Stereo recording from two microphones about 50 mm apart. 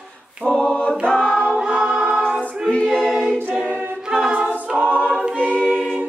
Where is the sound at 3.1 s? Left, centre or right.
Centre.